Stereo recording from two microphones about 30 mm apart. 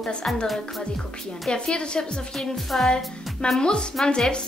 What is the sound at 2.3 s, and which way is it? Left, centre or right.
Speech, centre.